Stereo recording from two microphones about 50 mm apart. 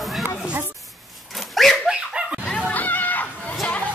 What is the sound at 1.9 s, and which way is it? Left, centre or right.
Dog, centre.